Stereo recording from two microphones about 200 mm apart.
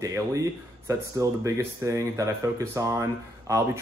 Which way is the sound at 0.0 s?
15° right (ahead or behind).